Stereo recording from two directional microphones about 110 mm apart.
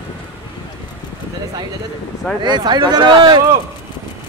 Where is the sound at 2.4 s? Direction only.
45° right (ahead or behind).